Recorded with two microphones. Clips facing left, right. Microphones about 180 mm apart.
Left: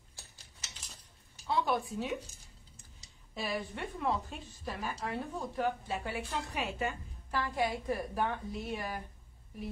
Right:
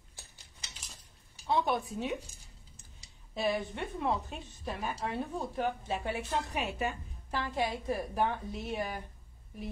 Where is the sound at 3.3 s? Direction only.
20° right (ahead or behind).